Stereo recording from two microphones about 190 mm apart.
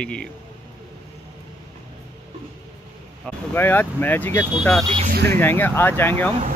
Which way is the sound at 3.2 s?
10° left (ahead or behind).